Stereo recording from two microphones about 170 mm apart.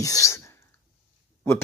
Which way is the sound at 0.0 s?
20° left (ahead or behind).